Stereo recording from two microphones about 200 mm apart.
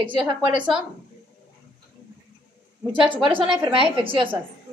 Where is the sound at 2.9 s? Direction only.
25° right (ahead or behind).